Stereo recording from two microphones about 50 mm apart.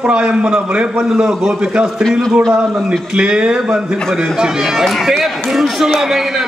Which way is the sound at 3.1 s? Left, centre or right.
Centre.